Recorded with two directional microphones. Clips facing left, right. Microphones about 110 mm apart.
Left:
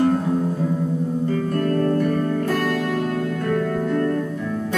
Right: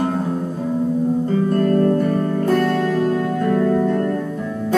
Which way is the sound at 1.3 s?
30° right (ahead or behind).